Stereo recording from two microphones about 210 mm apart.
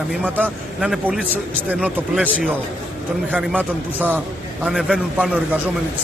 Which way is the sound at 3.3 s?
5° right (ahead or behind).